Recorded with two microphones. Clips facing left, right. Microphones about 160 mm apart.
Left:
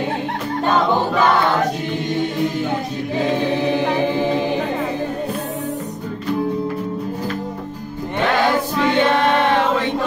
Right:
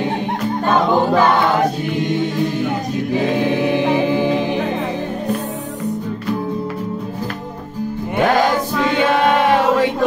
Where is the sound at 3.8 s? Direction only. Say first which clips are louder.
Right 2 dB; 15° right (ahead or behind).